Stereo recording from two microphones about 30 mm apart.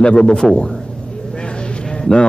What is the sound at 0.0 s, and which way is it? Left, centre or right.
Speech, left.